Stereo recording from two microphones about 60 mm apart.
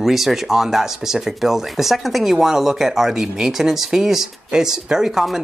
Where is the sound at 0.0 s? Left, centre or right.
Centre.